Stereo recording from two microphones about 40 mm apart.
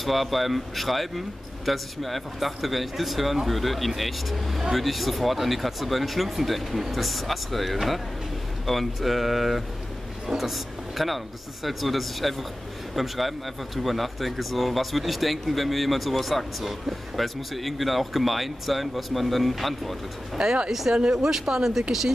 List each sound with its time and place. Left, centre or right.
0.0 s speech: centre
20.3 s speech: right